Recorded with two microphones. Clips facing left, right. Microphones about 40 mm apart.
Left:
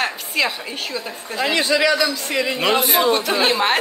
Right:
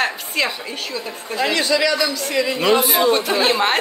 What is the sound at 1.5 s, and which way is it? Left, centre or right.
A man's voice, centre.